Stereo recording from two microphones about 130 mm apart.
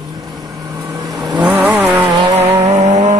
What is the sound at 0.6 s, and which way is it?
Vehicle, 25° right (ahead or behind).